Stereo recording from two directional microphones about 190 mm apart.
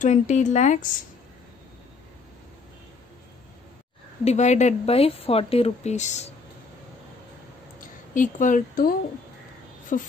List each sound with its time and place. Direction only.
0.0 s a woman's voice: 40° left (ahead or behind)
4.2 s a woman's voice: 35° left (ahead or behind)
8.1 s speech: 45° left (ahead or behind)